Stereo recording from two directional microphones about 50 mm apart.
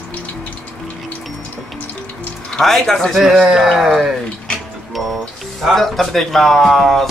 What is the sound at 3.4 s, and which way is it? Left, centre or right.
Speech, centre.